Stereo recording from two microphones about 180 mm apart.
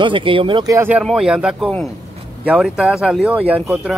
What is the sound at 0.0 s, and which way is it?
Speech, 30° right (ahead or behind).